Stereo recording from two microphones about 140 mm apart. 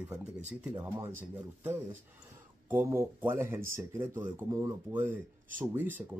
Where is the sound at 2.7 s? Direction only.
20° right (ahead or behind).